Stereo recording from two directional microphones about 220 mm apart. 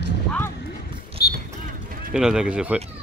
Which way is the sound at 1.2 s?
45° left (ahead or behind).